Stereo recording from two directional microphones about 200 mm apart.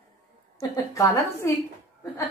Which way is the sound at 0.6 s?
15° left (ahead or behind).